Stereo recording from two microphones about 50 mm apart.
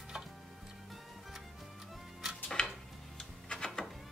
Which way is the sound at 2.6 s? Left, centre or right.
Centre.